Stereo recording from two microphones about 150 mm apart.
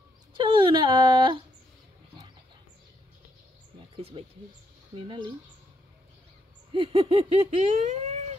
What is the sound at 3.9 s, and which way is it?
Speech, 40° right (ahead or behind).